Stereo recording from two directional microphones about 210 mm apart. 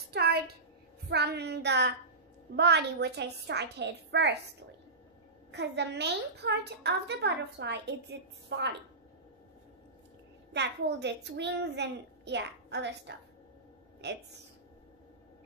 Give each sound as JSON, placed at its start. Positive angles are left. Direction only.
{"t": 0.1, "sound": "a sound", "side_deg": -50}
{"t": 1.0, "sound": "a woman's voice", "side_deg": -50}
{"t": 5.5, "sound": "a woman's voice", "side_deg": -55}
{"t": 10.5, "sound": "a child's voice", "side_deg": -55}